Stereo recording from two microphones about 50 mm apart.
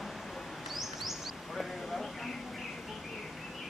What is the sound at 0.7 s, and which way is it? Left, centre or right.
Bird, centre.